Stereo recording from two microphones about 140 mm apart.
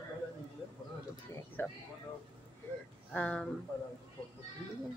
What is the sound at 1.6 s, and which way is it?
Speech, 15° left (ahead or behind).